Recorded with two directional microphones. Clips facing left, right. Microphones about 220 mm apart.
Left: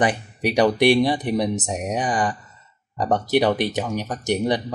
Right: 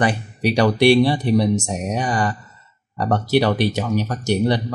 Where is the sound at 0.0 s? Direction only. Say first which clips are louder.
Right 2 dB; 20° left (ahead or behind).